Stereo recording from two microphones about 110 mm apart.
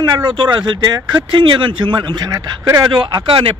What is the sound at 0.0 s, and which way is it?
Speech, 40° right (ahead or behind).